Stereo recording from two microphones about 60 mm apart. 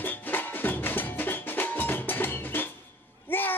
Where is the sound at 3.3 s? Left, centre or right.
Left.